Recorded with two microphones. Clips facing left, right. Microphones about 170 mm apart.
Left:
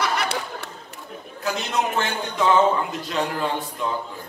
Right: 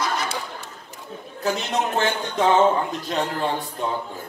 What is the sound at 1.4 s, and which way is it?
Speech, 40° right (ahead or behind).